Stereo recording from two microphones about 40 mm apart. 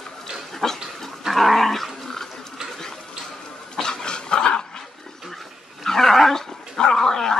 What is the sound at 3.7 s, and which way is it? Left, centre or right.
Dog, centre.